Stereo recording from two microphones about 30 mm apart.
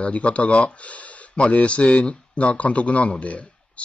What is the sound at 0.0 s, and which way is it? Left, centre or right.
Speech, left.